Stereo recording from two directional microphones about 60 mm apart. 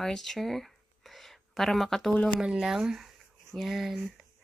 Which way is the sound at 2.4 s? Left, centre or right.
Centre.